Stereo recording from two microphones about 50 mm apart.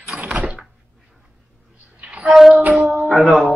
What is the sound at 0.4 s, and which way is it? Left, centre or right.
Door, right.